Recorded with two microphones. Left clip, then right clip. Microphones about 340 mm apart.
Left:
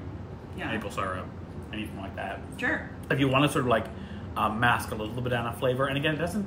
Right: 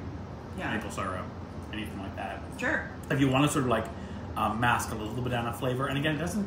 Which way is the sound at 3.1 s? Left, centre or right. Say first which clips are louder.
Left 2 dB; centre.